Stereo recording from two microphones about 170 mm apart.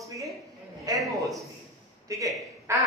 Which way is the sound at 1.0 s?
Centre (ahead or behind).